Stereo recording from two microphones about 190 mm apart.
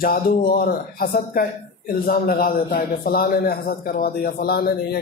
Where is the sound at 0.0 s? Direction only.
50° left (ahead or behind).